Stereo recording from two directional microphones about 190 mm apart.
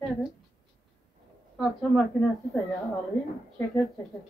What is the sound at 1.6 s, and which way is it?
Speech, centre (ahead or behind).